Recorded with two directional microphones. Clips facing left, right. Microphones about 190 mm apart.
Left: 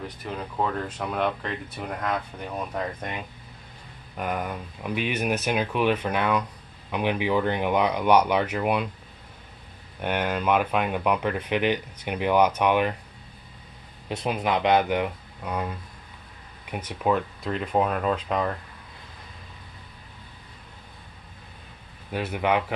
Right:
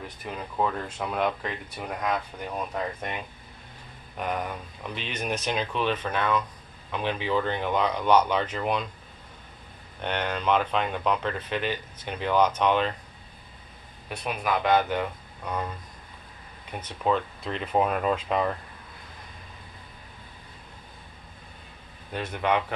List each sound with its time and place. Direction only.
0.4 s speech: centre (ahead or behind)
4.2 s speech: 5° left (ahead or behind)
10.0 s speech: 10° left (ahead or behind)
14.0 s speech: 25° left (ahead or behind)
16.7 s speech: 10° left (ahead or behind)
22.1 s speech: 10° left (ahead or behind)